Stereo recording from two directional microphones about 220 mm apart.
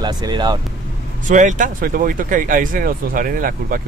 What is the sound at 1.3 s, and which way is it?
Speech, 35° right (ahead or behind).